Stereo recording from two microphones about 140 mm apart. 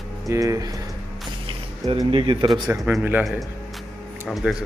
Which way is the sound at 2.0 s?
40° right (ahead or behind).